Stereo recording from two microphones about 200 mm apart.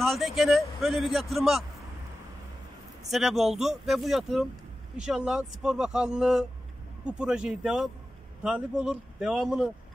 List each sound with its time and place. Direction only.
0.0 s a man's voice: centre (ahead or behind)
3.1 s a man's voice: centre (ahead or behind)